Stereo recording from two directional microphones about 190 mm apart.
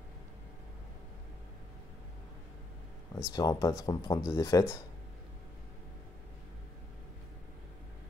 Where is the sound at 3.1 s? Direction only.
20° left (ahead or behind).